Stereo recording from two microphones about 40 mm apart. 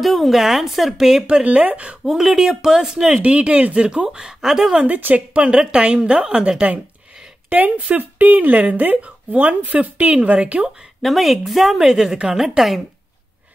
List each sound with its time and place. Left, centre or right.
0.0 s a woman's voice: centre
1.2 s speech: right
2.0 s speech: centre
3.3 s a woman's voice: right; by 4.7 s centre
4.7 s speech: right
5.3 s a woman's voice: right
7.4 s speech: right
8.2 s speech: right
11.0 s a woman's voice: centre